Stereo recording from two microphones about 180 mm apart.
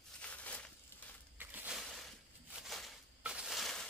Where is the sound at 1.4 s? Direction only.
10° right (ahead or behind).